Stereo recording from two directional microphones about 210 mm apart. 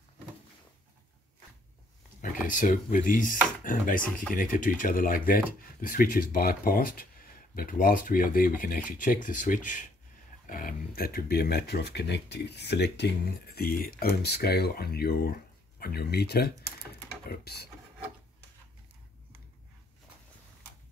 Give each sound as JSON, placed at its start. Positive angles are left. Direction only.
{"t": 2.2, "sound": "speech", "side_deg": 40}